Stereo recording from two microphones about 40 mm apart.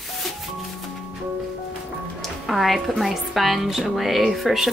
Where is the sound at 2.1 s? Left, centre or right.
Centre.